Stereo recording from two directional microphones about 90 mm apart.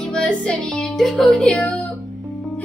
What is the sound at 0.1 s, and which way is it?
Music, 10° left (ahead or behind).